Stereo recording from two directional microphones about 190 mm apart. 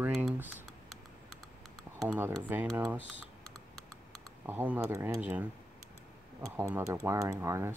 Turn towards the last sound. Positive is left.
turn(degrees=-15)  # may be behind; listen again after turning